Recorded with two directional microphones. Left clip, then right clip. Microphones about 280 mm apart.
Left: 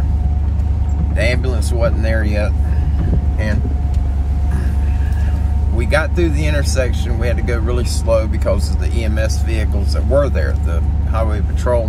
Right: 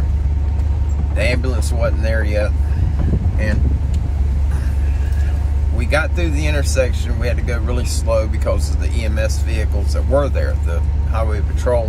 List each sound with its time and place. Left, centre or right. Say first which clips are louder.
1.1 s speech: left 1 dB; centre
5.8 s speech: left 2 dB; centre